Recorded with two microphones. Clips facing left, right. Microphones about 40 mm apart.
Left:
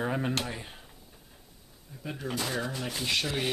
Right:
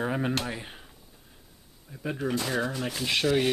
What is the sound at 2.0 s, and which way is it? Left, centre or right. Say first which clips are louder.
Speech: right 4 dB; centre.